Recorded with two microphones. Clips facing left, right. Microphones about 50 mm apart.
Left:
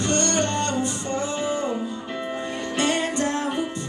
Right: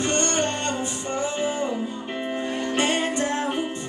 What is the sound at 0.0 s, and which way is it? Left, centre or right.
Music, right.